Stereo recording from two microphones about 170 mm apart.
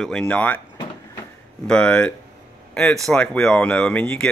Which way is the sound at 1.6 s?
5° left (ahead or behind).